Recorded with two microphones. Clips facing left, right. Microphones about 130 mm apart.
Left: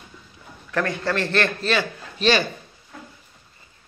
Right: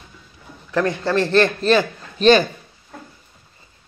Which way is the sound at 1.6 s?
45° right (ahead or behind).